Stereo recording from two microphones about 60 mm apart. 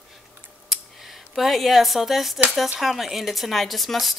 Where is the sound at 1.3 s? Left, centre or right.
Centre.